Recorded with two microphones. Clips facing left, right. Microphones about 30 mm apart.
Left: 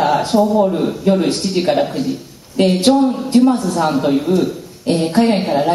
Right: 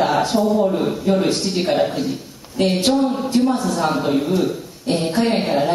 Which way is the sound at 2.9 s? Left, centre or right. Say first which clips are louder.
Left 5 dB; centre.